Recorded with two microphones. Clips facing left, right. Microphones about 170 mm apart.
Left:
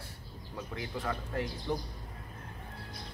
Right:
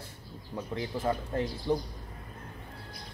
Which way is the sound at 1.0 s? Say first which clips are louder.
Right 5 dB; 35° right (ahead or behind).